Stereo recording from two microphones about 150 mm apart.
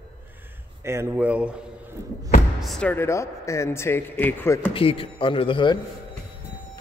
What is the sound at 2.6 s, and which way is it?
Speech, 5° left (ahead or behind).